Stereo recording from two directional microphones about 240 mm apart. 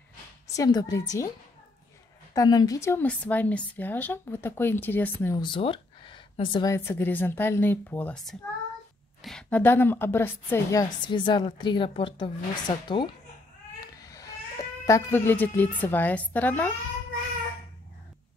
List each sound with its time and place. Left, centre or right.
0.6 s a woman's voice: centre
2.3 s a woman's voice: centre
14.0 s cat: centre
15.8 s a woman's voice: centre